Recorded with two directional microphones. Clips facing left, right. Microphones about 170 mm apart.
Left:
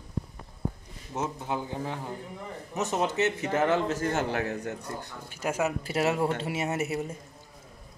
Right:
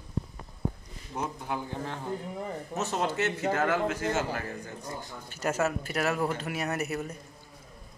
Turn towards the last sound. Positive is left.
turn(degrees=25)  # may be behind; listen again after turning